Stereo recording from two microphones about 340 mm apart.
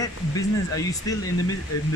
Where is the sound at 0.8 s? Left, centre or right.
Centre.